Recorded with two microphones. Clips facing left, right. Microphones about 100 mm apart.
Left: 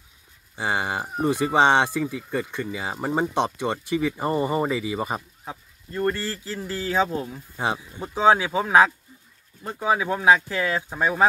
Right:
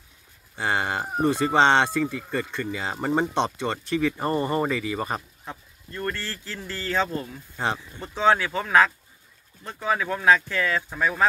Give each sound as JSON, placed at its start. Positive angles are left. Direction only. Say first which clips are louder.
{"t": 0.6, "sound": "speech", "louder": "even", "side_deg": 15}
{"t": 6.1, "sound": "speech", "louder": "left 5 dB", "side_deg": 5}